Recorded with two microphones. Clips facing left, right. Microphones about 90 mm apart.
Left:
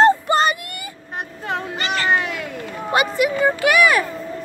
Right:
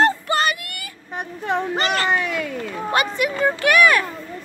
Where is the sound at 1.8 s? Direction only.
45° right (ahead or behind).